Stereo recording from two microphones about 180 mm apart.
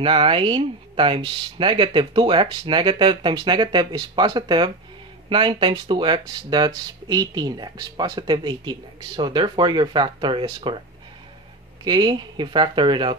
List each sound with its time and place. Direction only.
0.0 s speech: 30° right (ahead or behind)
11.8 s speech: 25° right (ahead or behind)